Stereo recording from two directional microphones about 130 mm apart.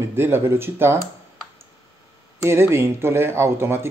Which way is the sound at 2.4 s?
20° right (ahead or behind).